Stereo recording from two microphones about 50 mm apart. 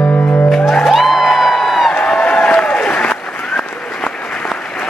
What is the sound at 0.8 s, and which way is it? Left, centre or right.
Music, centre.